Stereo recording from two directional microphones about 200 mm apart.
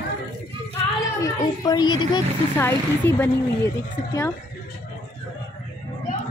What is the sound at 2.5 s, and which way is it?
Speech, 10° left (ahead or behind).